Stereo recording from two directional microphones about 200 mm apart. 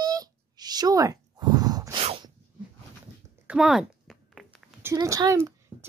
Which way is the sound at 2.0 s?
30° right (ahead or behind).